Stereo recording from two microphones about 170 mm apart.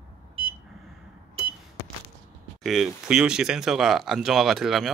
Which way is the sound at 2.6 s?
Centre (ahead or behind).